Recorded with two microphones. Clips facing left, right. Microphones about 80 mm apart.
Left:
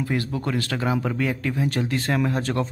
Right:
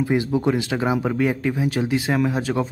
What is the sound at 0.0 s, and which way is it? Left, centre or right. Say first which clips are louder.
Speech: right 6 dB; centre.